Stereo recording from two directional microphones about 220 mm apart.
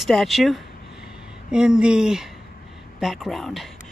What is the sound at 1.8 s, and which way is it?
Speech, 5° right (ahead or behind).